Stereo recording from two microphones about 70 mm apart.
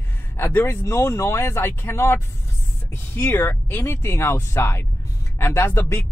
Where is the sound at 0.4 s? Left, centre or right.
Left.